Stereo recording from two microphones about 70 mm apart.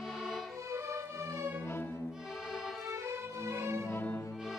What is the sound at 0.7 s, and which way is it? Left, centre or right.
Music, right.